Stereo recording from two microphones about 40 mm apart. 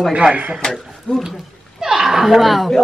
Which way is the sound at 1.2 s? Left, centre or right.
Centre.